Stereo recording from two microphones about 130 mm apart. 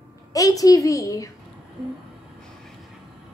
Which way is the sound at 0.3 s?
30° left (ahead or behind).